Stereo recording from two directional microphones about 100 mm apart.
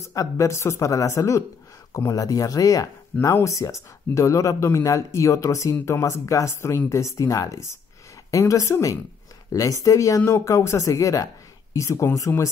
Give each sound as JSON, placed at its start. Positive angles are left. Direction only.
{"t": 0.1, "sound": "speech", "side_deg": 35}